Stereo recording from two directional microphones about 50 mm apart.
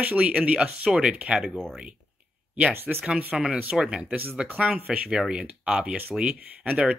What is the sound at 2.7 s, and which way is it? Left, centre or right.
Speech, right.